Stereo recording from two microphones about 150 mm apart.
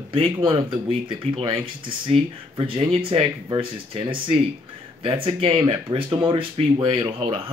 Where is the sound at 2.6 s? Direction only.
40° right (ahead or behind).